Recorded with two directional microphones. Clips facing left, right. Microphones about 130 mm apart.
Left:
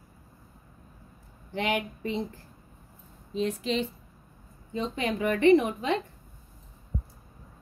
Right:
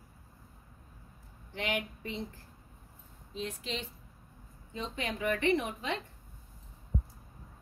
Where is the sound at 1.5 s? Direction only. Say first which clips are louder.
Left 6 dB; 90° left.